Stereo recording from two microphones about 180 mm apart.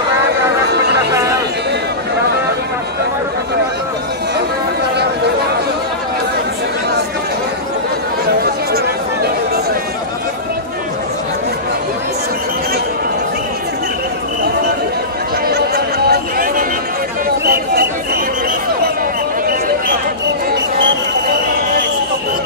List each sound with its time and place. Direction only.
0.9 s music: 15° right (ahead or behind)
8.3 s chatter: 60° right (ahead or behind)
15.4 s a sound: 60° right (ahead or behind)